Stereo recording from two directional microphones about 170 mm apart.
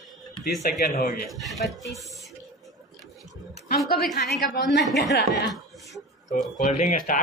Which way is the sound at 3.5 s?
65° left (ahead or behind).